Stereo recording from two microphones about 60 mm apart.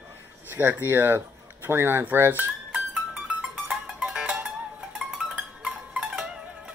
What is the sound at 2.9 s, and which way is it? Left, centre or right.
Music, centre.